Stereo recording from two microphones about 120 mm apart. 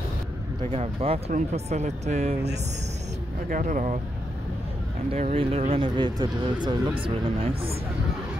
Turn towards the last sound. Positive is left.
turn(degrees=-45)  # may be behind; listen again after turning